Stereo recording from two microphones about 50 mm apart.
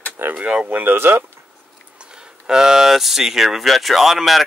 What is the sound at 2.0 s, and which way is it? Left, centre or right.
Speech, centre.